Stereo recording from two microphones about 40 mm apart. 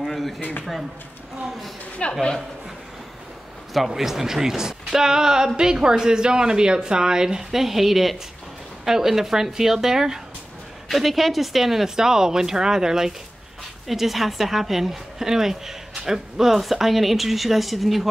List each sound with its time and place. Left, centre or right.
0.0 s a sound: centre
0.4 s speech: left
2.0 s speech: left
3.7 s speech: centre
10.9 s speech: centre